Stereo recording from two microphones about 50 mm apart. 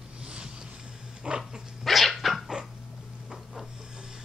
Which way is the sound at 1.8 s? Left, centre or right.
Centre.